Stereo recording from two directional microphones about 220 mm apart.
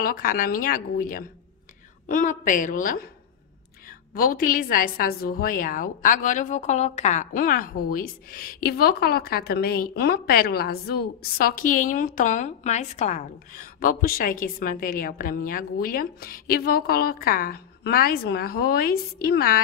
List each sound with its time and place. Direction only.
0.0 s a woman's voice: 40° left (ahead or behind)
4.1 s a woman's voice: 40° left (ahead or behind)